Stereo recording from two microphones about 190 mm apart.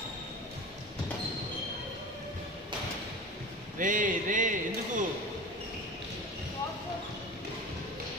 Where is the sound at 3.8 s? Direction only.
45° right (ahead or behind).